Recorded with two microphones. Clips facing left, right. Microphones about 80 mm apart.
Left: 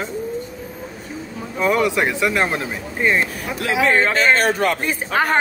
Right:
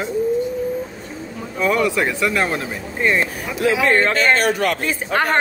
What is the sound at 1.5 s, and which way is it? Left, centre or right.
Speech, centre.